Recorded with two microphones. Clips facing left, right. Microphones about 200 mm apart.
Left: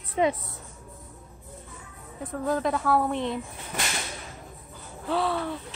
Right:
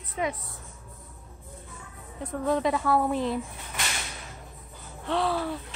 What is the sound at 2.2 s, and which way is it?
Speech, centre (ahead or behind).